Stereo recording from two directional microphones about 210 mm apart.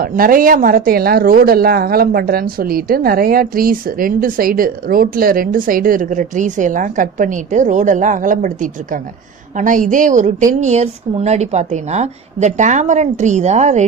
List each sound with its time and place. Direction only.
0.0 s a woman's voice: 40° right (ahead or behind)